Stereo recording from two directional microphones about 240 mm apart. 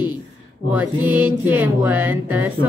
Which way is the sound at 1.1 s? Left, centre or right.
Centre.